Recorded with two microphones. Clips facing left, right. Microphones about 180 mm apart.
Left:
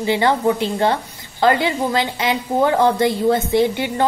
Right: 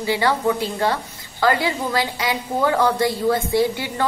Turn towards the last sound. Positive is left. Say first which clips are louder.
# left 3 dB
turn(degrees=20)  # may be behind; listen again after turning